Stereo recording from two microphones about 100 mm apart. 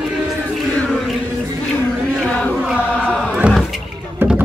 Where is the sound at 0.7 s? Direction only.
5° left (ahead or behind).